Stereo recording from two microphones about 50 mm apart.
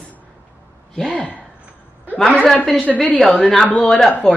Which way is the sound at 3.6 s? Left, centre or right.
Left.